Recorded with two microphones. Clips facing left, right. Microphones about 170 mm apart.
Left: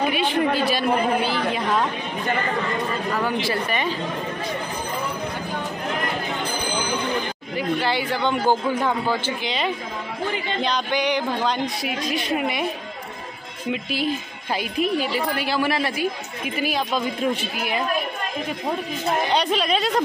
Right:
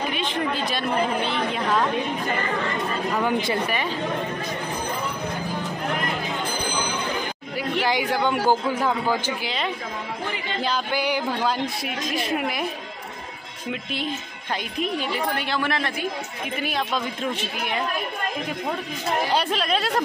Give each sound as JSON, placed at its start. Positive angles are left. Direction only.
{"t": 0.1, "sound": "chatter", "side_deg": 10}
{"t": 3.2, "sound": "a man's voice", "side_deg": -15}
{"t": 7.8, "sound": "a man's voice", "side_deg": -10}
{"t": 10.6, "sound": "speech", "side_deg": -5}
{"t": 14.5, "sound": "speech", "side_deg": 5}
{"t": 19.2, "sound": "speech", "side_deg": -5}